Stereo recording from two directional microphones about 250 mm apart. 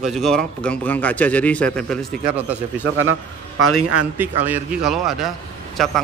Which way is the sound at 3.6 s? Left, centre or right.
Right.